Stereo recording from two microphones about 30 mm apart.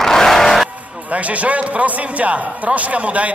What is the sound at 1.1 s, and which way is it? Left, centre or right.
A man's voice, right.